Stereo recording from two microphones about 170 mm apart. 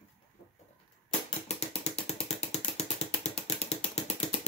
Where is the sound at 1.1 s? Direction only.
35° left (ahead or behind).